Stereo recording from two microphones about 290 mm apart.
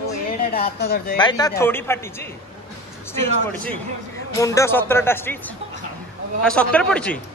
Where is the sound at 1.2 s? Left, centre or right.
Centre.